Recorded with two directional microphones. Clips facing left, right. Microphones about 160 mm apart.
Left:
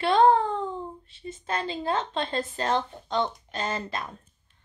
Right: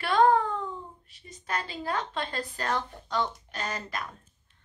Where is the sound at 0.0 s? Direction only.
25° left (ahead or behind).